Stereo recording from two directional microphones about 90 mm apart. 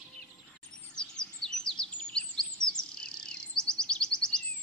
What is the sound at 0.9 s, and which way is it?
Chirp, 10° left (ahead or behind).